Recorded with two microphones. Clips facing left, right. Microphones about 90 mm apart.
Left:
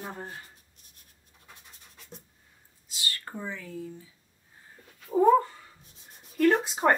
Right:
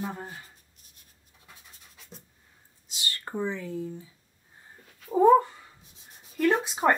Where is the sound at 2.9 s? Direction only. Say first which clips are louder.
Right 3 dB; 25° right (ahead or behind).